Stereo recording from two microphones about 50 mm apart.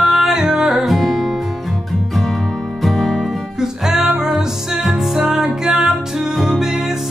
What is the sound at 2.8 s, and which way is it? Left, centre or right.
Music, centre.